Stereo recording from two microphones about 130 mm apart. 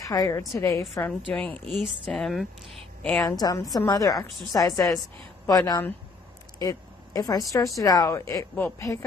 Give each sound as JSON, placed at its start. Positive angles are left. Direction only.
{"t": 0.0, "sound": "speech", "side_deg": 25}
{"t": 1.3, "sound": "speech", "side_deg": 10}
{"t": 1.7, "sound": "a woman's voice", "side_deg": 0}
{"t": 3.3, "sound": "speech", "side_deg": 25}